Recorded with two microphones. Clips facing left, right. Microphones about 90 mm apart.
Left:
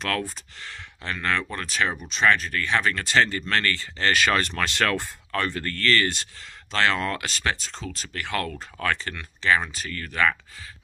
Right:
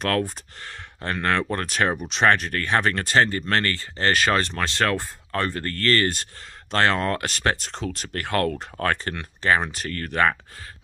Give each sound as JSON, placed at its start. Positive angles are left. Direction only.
{"t": 0.6, "sound": "speech", "side_deg": -45}